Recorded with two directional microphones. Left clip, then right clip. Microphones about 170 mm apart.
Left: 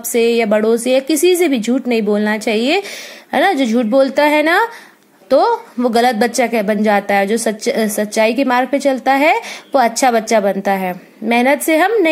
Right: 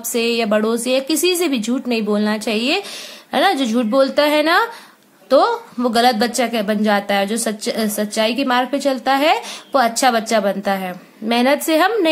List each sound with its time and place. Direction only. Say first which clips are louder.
0.1 s a woman's voice: left 4 dB; 20° left (ahead or behind)